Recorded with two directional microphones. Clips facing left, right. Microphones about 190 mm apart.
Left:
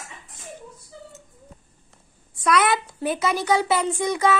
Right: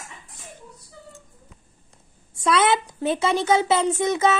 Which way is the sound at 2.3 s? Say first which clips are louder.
Right 1 dB; 25° right (ahead or behind).